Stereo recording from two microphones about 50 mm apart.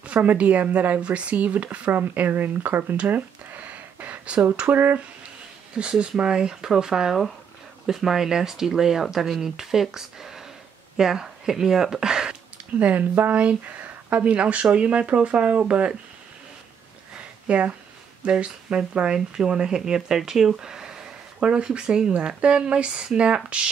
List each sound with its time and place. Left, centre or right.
0.0 s speech: right
3.1 s a sound: right
4.6 s speech: right
5.8 s speech: right
12.7 s speech: right
17.5 s speech: right